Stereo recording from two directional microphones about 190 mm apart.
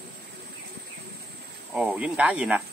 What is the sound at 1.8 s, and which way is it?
Speech, 5° right (ahead or behind).